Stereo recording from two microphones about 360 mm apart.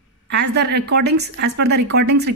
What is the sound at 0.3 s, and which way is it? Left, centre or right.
A woman's voice, right.